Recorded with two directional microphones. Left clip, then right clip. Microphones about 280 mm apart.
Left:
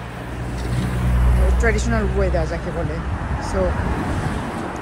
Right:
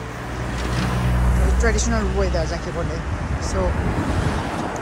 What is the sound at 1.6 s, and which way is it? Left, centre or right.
Speech, centre.